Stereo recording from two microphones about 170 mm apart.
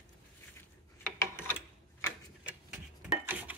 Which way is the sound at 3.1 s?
10° right (ahead or behind).